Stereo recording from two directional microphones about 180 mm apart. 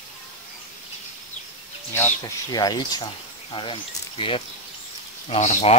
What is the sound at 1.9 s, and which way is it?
Speech, 10° left (ahead or behind).